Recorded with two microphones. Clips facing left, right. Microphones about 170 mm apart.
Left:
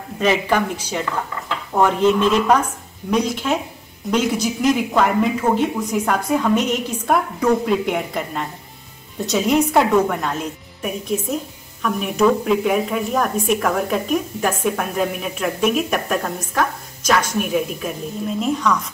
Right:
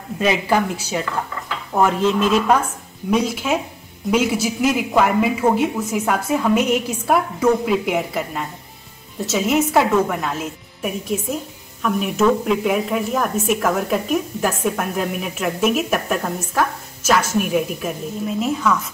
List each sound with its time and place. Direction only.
0.2 s a woman's voice: 10° right (ahead or behind)